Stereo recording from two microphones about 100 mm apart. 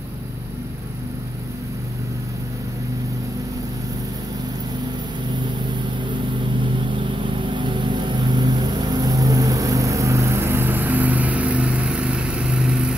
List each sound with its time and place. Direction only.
7.4 s vehicle: 55° right (ahead or behind); by 12.9 s 10° right (ahead or behind)